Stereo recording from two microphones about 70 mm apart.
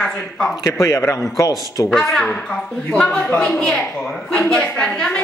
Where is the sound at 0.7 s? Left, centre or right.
Left.